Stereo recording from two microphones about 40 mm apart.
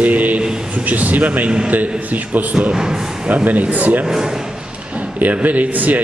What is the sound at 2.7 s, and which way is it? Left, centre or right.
Speech, centre.